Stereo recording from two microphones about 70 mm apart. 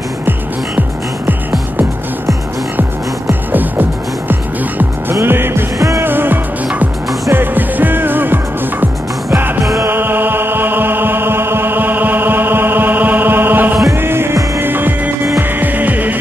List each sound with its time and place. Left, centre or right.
3.3 s music: right
5.2 s music: right
5.8 s music: right
6.0 s music: right